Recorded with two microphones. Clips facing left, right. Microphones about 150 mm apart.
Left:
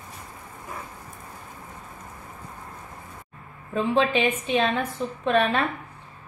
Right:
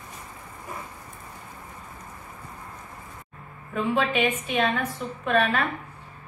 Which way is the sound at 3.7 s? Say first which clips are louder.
Left 2 dB; 25° left (ahead or behind).